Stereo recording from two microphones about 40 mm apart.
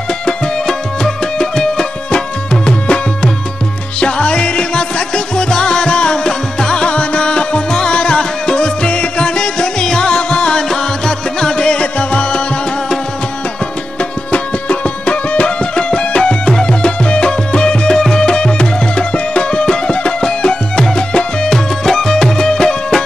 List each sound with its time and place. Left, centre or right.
0.2 s music: centre
14.3 s music: left; by 23.0 s centre